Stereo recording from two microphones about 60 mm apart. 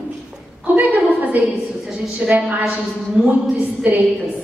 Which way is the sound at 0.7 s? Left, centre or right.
Right.